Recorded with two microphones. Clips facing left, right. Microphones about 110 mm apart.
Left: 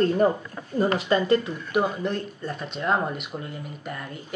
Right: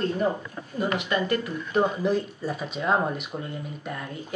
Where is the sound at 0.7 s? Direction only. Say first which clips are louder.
Left 4 dB; 35° left (ahead or behind).